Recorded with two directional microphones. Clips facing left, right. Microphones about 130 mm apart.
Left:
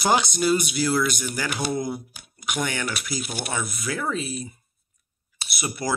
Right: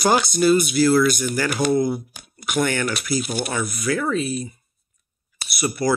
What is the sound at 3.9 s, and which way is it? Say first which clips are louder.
Speech: right 8 dB; 25° left (ahead or behind).